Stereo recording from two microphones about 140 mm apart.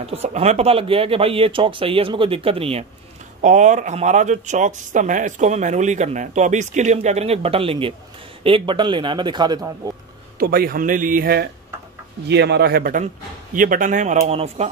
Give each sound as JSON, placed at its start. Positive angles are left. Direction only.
{"t": 0.0, "sound": "speech", "side_deg": -45}
{"t": 3.3, "sound": "a man's voice", "side_deg": -60}
{"t": 10.4, "sound": "speech", "side_deg": -90}
{"t": 12.7, "sound": "speech", "side_deg": -90}
{"t": 13.0, "sound": "speech", "side_deg": -75}